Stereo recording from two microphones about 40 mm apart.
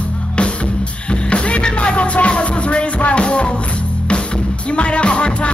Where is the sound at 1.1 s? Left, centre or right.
Left.